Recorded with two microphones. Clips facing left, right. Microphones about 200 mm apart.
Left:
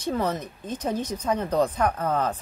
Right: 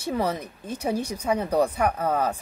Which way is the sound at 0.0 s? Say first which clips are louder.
Even; 10° right (ahead or behind).